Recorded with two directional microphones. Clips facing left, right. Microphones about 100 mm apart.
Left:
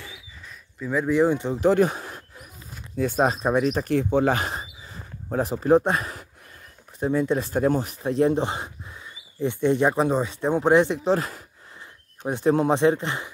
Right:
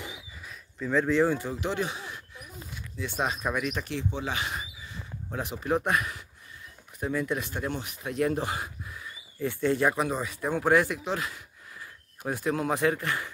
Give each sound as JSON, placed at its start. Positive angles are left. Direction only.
{"t": 0.5, "sound": "speech", "side_deg": 5}
{"t": 1.6, "sound": "speech", "side_deg": 45}
{"t": 12.3, "sound": "speech", "side_deg": 25}